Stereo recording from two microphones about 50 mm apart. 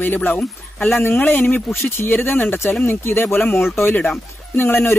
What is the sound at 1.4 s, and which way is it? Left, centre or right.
Speech, left.